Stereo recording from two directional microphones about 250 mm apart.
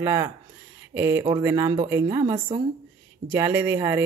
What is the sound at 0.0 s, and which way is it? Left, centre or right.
A woman's voice, centre.